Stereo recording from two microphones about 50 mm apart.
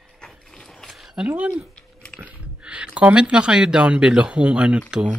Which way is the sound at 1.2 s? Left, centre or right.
Right.